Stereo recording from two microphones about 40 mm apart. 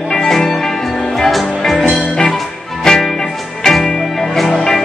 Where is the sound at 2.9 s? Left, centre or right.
Centre.